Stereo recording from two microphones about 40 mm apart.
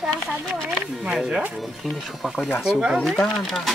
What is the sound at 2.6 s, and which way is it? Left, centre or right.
Speech, right.